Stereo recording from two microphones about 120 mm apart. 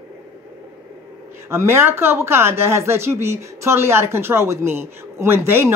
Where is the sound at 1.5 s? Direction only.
20° right (ahead or behind).